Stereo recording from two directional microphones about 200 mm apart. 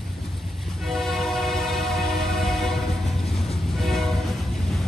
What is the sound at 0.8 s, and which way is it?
Train, centre (ahead or behind).